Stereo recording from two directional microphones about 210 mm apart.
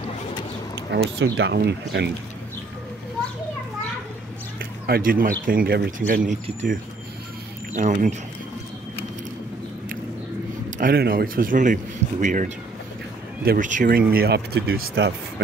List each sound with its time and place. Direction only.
0.7 s speech: 55° right (ahead or behind)
4.8 s a man's voice: 45° right (ahead or behind)
7.7 s a man's voice: 35° right (ahead or behind)
10.8 s a man's voice: 45° right (ahead or behind)
13.5 s speech: 35° right (ahead or behind); by 15.4 s 55° right (ahead or behind)